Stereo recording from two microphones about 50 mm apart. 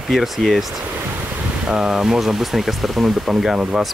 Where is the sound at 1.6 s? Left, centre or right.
Centre.